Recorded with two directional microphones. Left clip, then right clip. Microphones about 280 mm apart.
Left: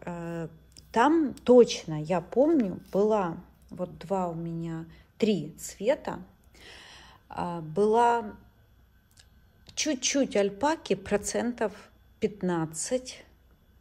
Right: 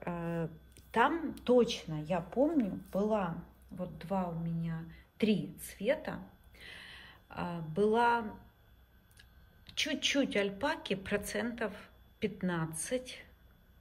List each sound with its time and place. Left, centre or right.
0.0 s speech: centre
9.7 s a woman's voice: centre